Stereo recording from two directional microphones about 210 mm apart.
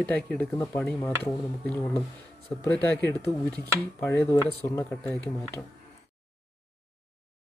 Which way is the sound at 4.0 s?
10° left (ahead or behind).